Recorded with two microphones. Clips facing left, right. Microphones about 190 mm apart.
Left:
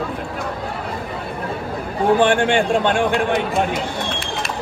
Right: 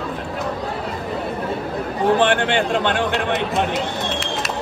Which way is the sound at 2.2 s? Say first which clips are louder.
Left 2 dB; 50° left (ahead or behind).